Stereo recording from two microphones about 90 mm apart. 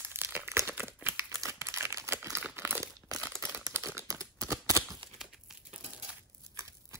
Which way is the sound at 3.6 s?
35° right (ahead or behind).